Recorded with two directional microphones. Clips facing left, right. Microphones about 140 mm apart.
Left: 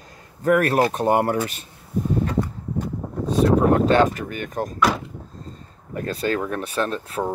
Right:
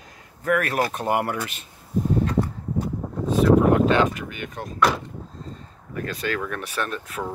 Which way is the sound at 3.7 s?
40° left (ahead or behind).